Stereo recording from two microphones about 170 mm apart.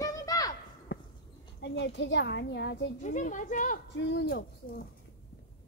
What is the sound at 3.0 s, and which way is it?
Speech, 45° left (ahead or behind).